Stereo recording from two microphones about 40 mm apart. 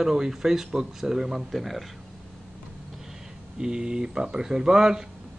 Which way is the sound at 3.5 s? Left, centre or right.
Centre.